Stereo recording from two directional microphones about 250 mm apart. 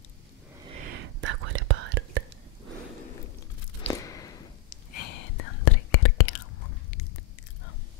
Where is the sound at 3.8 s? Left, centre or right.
Centre.